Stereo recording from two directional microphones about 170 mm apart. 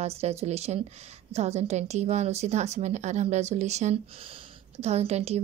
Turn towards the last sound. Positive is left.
turn(degrees=-40)  # may be behind; listen again after turning